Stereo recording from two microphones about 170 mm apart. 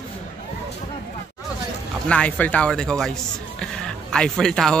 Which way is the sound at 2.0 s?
5° left (ahead or behind).